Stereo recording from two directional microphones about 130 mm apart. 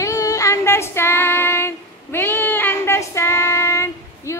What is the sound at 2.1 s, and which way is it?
Child singing, 15° left (ahead or behind).